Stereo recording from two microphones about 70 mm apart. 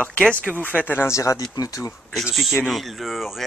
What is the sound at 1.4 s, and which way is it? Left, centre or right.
Speech, left.